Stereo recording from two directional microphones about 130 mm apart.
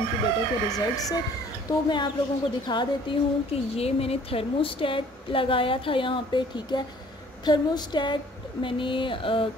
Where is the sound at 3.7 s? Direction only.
50° left (ahead or behind).